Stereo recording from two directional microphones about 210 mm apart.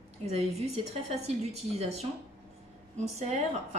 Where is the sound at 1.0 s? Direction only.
30° right (ahead or behind).